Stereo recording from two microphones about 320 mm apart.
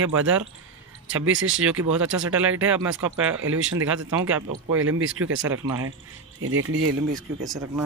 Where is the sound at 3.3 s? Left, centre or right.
Right.